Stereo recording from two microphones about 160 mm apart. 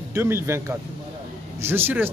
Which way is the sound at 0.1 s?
15° right (ahead or behind).